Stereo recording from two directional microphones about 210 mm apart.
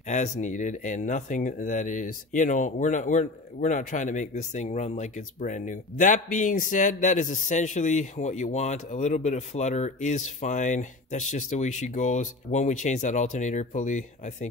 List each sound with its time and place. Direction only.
0.1 s speech: 35° left (ahead or behind)